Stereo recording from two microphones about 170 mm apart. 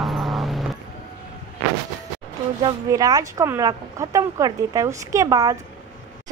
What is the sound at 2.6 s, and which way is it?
Speech, 20° right (ahead or behind).